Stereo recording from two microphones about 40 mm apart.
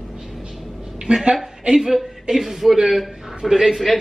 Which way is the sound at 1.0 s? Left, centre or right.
Right.